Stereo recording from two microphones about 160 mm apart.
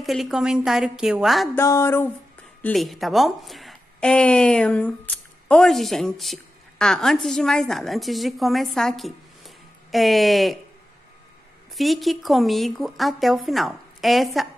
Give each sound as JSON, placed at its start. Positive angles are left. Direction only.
{"t": 0.0, "sound": "speech", "side_deg": 0}
{"t": 1.6, "sound": "speech", "side_deg": 15}
{"t": 2.6, "sound": "a woman's voice", "side_deg": 0}
{"t": 11.7, "sound": "speech", "side_deg": 0}